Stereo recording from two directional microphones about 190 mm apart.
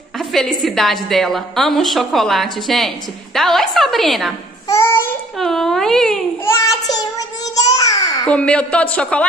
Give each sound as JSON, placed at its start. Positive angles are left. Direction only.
{"t": 0.2, "sound": "a woman's voice", "side_deg": 0}
{"t": 4.6, "sound": "child singing", "side_deg": 15}
{"t": 5.4, "sound": "speech", "side_deg": 0}
{"t": 6.4, "sound": "child singing", "side_deg": 20}
{"t": 8.3, "sound": "a woman's voice", "side_deg": 5}